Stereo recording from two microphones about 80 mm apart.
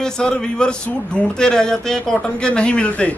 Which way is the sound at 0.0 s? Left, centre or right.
Centre.